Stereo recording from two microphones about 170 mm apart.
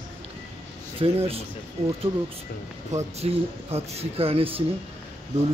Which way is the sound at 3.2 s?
35° right (ahead or behind).